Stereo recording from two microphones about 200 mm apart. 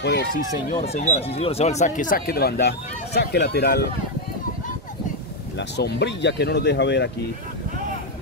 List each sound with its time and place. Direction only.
0.0 s speech: 55° left (ahead or behind)
0.7 s speech: 35° left (ahead or behind); by 3.8 s 55° left (ahead or behind)
5.6 s speech: 60° left (ahead or behind)